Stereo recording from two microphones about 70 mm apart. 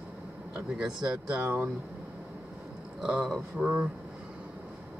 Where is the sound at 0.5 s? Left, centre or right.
Centre.